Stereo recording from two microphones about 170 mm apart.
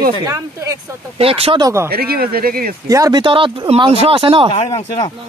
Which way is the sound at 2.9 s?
20° right (ahead or behind).